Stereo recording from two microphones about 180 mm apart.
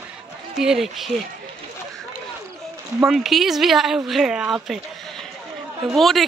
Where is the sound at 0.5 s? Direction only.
Centre (ahead or behind).